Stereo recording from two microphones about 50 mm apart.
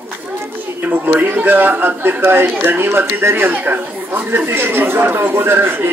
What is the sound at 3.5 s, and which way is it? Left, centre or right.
Speech, right.